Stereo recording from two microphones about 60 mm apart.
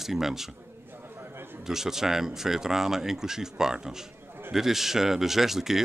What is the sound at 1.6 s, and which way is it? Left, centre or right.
Speech, centre.